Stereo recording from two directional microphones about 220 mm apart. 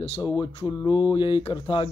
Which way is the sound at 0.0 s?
25° left (ahead or behind).